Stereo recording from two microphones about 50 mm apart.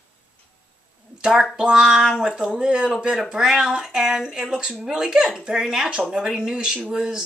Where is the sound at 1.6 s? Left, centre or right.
Centre.